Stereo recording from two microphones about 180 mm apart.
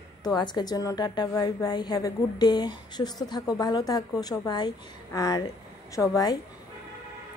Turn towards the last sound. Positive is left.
turn(degrees=20)  # may be behind; listen again after turning